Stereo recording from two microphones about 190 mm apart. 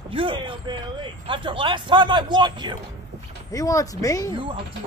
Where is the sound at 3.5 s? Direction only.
15° left (ahead or behind).